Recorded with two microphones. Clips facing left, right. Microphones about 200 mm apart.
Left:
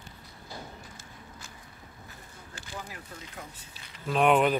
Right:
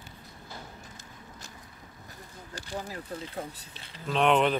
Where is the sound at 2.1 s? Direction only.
40° right (ahead or behind).